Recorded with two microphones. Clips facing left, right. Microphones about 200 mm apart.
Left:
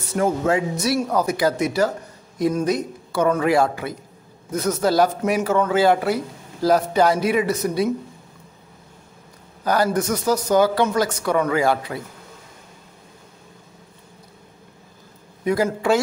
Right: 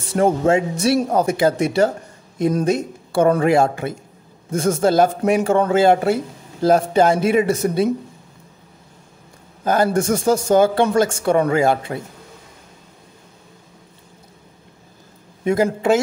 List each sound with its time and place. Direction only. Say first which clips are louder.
0.1 s speech: right 4 dB; 30° right (ahead or behind)
9.7 s speech: right 3 dB; 25° right (ahead or behind)
15.4 s speech: right 3 dB; 20° right (ahead or behind)